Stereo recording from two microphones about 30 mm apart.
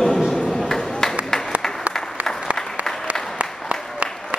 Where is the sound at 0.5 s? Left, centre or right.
Centre.